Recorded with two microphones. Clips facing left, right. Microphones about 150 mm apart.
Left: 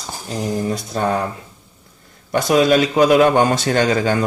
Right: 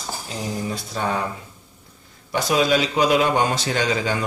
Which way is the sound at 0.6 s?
45° left (ahead or behind).